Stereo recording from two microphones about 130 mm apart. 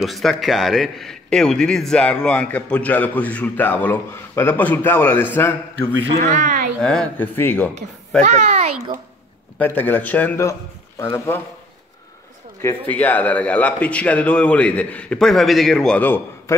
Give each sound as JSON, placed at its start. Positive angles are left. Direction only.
{"t": 0.0, "sound": "a man's voice", "side_deg": 0}
{"t": 6.4, "sound": "speech", "side_deg": -90}
{"t": 6.8, "sound": "a man's voice", "side_deg": 5}
{"t": 8.2, "sound": "a child's voice", "side_deg": -60}
{"t": 9.6, "sound": "a man's voice", "side_deg": 15}
{"t": 12.6, "sound": "a man's voice", "side_deg": 15}